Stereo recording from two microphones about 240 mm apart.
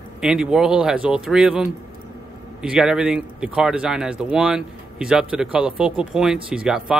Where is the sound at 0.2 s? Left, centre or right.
Centre.